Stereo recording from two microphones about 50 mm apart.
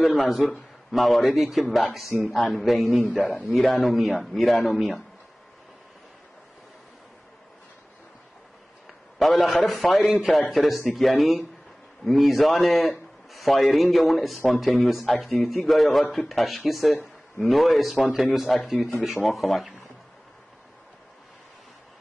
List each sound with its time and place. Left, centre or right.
0.5 s speech: centre
3.2 s a man's voice: centre
3.5 s speech: centre
8.8 s a sound: centre
9.7 s speech: centre